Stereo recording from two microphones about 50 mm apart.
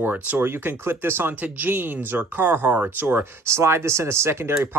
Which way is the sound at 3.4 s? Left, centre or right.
Right.